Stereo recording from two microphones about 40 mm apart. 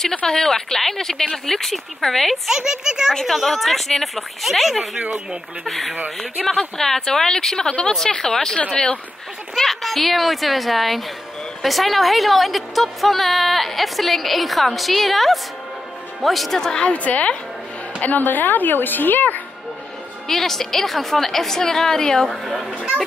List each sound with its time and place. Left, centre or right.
0.3 s a woman's voice: centre
2.4 s speech: centre
3.3 s a woman's voice: centre
9.6 s a woman's voice: centre
16.8 s a woman's voice: left
18.0 s a woman's voice: left
20.2 s a woman's voice: centre